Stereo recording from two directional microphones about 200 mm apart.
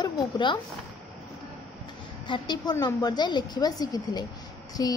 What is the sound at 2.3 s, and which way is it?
A woman's voice, 20° left (ahead or behind).